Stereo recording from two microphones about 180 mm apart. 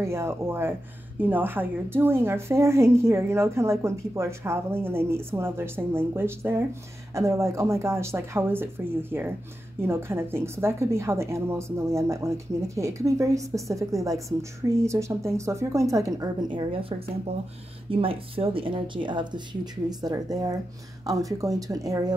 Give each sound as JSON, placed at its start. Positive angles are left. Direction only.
{"t": 0.0, "sound": "a woman's voice", "side_deg": -15}